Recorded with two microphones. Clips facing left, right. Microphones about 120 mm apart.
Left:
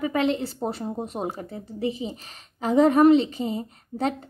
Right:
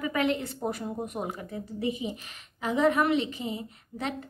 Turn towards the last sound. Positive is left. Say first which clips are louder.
# left 7 dB
turn(degrees=40)  # may be behind; listen again after turning